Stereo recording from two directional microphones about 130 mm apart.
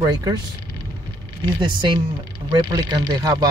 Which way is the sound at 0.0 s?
30° right (ahead or behind).